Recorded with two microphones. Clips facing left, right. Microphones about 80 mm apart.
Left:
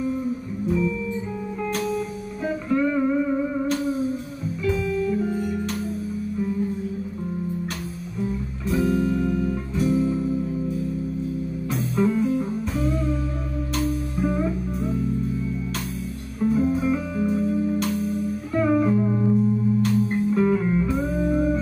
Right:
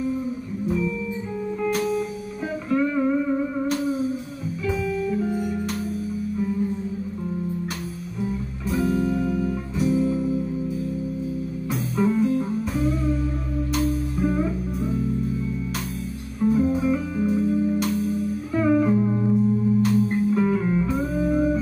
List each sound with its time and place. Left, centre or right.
2.7 s music: centre
8.6 s music: centre
11.7 s music: centre
14.2 s music: centre
16.3 s music: centre